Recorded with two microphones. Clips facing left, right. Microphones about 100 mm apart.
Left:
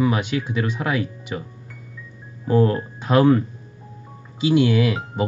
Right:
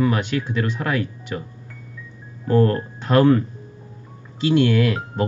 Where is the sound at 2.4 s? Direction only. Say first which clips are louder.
Even; 10° left (ahead or behind).